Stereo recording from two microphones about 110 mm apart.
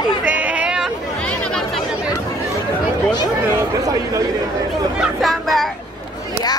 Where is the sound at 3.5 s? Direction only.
30° right (ahead or behind).